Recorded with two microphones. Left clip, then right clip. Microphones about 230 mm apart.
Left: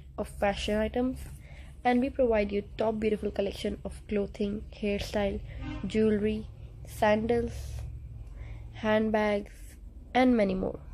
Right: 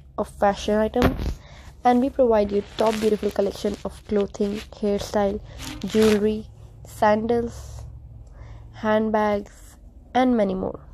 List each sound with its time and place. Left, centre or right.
0.1 s a woman's voice: centre
8.7 s speech: centre